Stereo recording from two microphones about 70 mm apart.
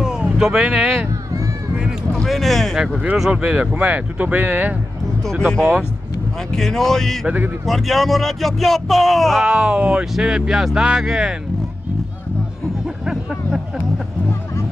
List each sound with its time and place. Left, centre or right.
0.0 s vehicle: centre
2.2 s speech: centre
3.2 s speech: centre
5.5 s speech: centre
7.2 s speech: right
7.6 s speech: centre
9.4 s speech: centre
12.8 s a sound: centre